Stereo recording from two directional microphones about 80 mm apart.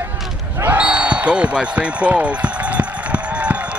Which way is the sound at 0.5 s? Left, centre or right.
Centre.